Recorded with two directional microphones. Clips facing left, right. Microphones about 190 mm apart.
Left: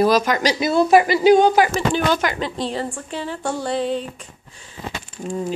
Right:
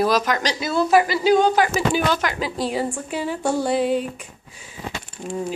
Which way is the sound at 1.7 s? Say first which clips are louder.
Left 1 dB; 5° right (ahead or behind).